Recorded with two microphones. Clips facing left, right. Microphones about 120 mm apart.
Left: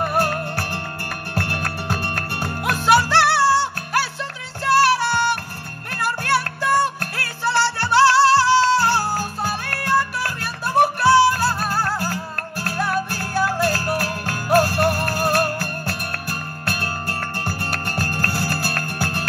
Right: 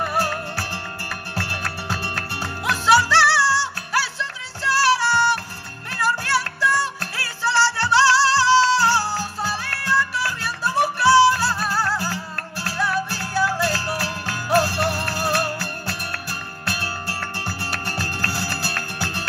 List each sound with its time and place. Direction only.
0.0 s music: 50° left (ahead or behind)